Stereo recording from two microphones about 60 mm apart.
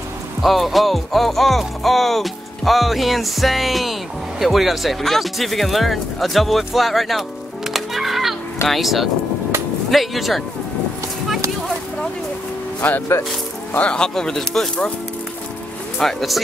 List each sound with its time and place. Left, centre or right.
0.4 s music: centre
12.8 s speech: left; by 14.9 s centre
16.0 s music: centre